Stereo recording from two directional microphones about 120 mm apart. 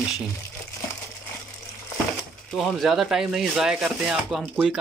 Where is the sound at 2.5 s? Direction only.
5° left (ahead or behind).